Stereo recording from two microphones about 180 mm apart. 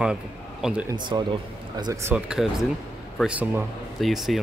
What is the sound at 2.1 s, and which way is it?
Speech, 5° right (ahead or behind).